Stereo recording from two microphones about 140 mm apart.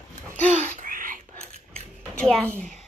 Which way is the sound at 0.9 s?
75° right (ahead or behind).